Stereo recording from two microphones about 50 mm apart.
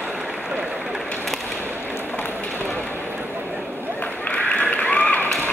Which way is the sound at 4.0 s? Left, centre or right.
Left.